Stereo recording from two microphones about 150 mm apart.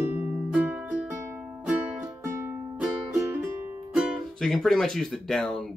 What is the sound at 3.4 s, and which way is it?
Speech, 5° right (ahead or behind).